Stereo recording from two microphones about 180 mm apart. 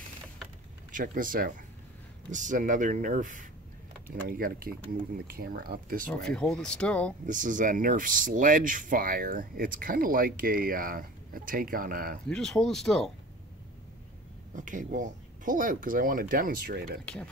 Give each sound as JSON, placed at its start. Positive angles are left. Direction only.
{"t": 0.9, "sound": "speech", "side_deg": -50}
{"t": 6.2, "sound": "speech", "side_deg": 5}
{"t": 7.2, "sound": "speech", "side_deg": -45}
{"t": 12.3, "sound": "speech", "side_deg": 5}
{"t": 14.5, "sound": "speech", "side_deg": -45}
{"t": 17.0, "sound": "speech", "side_deg": 5}